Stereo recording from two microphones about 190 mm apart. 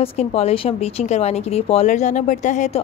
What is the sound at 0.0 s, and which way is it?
A woman's voice, 30° left (ahead or behind).